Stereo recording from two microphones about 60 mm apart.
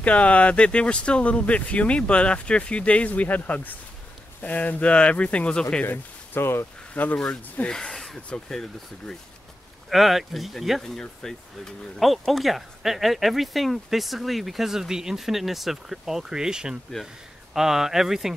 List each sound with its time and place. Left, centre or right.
0.0 s speech: left
5.9 s speech: left
7.0 s speech: left
7.7 s speech: centre
9.8 s speech: centre